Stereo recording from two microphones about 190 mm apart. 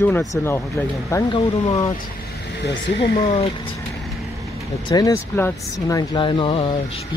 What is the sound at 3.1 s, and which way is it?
Speech, 30° left (ahead or behind).